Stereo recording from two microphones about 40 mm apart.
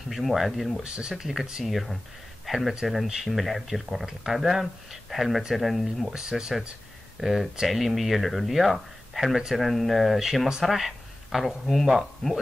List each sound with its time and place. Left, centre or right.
0.1 s speech: centre
0.8 s speech: right
1.1 s speech: centre
1.7 s speech: centre
6.1 s speech: centre
7.2 s speech: centre